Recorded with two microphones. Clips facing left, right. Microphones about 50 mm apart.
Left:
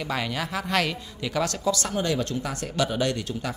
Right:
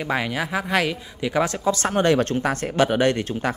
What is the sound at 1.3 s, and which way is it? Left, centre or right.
Speech, right.